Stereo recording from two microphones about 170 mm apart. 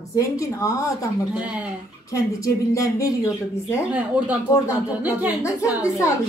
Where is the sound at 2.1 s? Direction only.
20° left (ahead or behind).